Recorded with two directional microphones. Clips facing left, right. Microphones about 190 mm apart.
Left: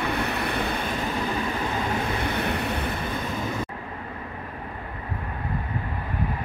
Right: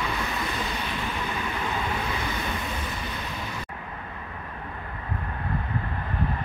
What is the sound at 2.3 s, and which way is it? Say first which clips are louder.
Vehicle: left 5 dB; 65° left (ahead or behind).